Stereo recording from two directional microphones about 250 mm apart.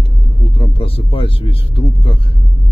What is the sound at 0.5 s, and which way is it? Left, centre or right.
Speech, left.